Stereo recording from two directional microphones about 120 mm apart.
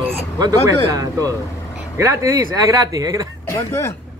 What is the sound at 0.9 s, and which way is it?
Speech, 30° right (ahead or behind).